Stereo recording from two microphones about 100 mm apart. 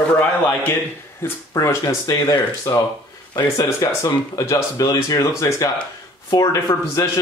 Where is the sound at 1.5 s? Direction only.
30° left (ahead or behind).